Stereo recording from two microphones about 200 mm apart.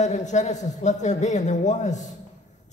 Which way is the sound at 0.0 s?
35° left (ahead or behind).